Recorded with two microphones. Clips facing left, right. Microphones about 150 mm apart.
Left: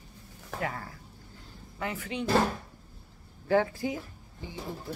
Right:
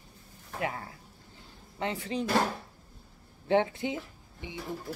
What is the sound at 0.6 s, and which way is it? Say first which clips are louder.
Speech: right 1 dB; 20° right (ahead or behind).